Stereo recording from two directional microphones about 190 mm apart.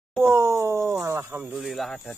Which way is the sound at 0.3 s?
15° right (ahead or behind).